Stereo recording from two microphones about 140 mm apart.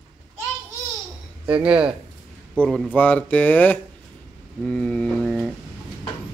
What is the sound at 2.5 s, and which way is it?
A man's voice, 5° left (ahead or behind).